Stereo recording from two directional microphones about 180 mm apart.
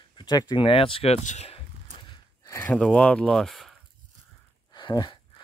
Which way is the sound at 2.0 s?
25° left (ahead or behind).